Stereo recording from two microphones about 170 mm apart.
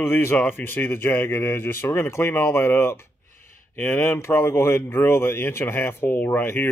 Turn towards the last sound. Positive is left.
turn(degrees=10)  # may be behind; listen again after turning